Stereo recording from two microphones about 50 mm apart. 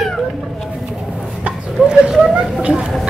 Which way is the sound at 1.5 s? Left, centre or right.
Centre.